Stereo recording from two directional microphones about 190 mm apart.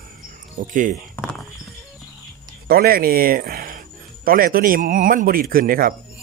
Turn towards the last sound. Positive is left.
turn(degrees=-45)  # may be behind; listen again after turning